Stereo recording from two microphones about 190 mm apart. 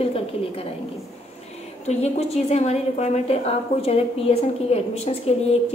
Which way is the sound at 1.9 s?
35° left (ahead or behind).